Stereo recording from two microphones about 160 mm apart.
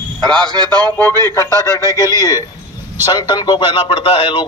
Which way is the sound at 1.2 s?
20° left (ahead or behind).